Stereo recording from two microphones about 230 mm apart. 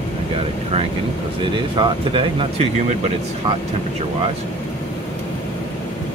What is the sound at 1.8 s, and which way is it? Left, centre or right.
Speech, right.